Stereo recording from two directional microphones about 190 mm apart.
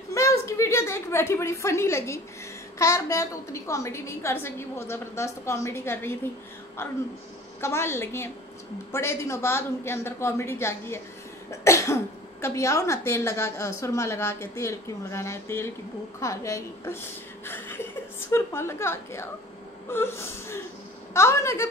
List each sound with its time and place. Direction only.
0.1 s a sound: 15° left (ahead or behind)
2.8 s speech: 15° left (ahead or behind)
7.6 s speech: 15° left (ahead or behind)